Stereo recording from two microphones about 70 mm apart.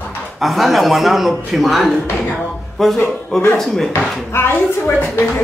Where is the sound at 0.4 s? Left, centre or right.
Centre.